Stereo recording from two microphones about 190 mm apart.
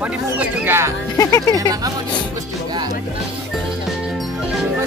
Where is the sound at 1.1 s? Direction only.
15° left (ahead or behind).